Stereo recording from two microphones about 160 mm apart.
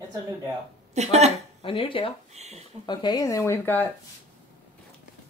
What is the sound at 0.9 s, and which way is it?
Speech, 45° right (ahead or behind).